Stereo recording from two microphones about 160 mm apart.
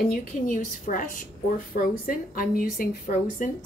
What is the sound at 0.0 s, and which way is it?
A woman's voice, 55° left (ahead or behind).